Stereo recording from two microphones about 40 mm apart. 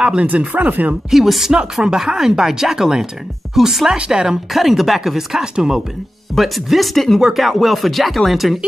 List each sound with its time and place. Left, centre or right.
0.0 s speech: right
1.1 s speech: centre
1.5 s speech: right; by 3.8 s centre
3.8 s speech: centre
4.5 s speech: centre
6.3 s speech: centre